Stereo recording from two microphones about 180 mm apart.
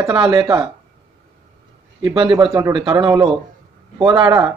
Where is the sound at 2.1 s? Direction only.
25° right (ahead or behind).